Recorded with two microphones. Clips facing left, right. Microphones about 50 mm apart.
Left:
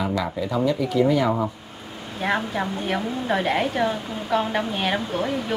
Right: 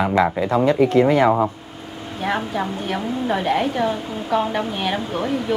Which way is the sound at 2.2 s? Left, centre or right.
Centre.